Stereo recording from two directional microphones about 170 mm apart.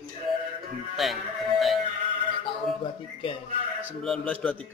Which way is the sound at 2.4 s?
30° left (ahead or behind).